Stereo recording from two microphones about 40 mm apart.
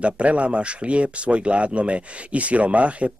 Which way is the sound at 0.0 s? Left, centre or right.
Right.